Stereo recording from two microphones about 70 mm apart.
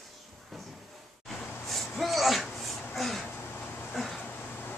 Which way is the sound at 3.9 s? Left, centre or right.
Centre.